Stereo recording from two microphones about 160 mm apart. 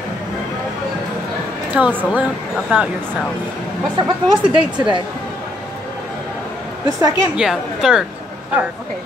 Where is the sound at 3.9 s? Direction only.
30° right (ahead or behind).